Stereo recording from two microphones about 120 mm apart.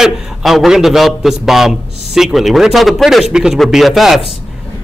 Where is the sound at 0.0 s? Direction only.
Centre (ahead or behind).